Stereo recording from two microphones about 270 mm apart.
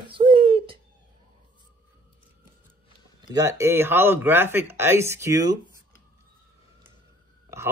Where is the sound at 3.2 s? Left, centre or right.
Centre.